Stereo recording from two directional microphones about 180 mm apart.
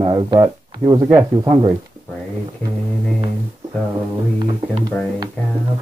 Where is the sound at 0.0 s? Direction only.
20° right (ahead or behind).